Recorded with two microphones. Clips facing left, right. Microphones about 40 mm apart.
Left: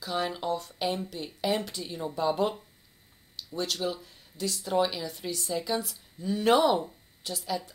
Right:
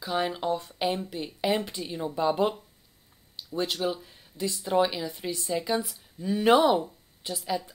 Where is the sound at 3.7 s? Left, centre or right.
Centre.